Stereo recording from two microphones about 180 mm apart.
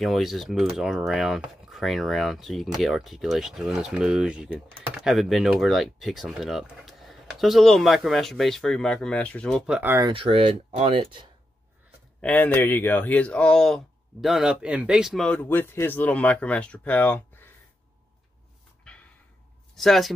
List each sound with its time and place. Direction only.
0.0 s speech: centre (ahead or behind)
9.8 s speech: 15° right (ahead or behind)
10.0 s speech: 30° right (ahead or behind)
12.2 s speech: 10° left (ahead or behind)
19.7 s speech: centre (ahead or behind)